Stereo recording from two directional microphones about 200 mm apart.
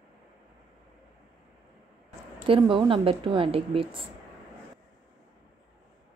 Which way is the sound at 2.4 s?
25° right (ahead or behind).